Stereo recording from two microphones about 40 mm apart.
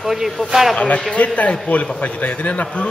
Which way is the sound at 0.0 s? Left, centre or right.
Centre.